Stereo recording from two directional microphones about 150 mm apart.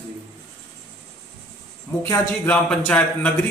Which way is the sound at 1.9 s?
20° left (ahead or behind).